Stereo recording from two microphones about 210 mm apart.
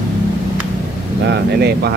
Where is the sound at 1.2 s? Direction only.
50° right (ahead or behind).